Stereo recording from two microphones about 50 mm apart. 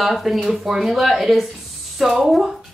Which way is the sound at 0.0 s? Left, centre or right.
Centre.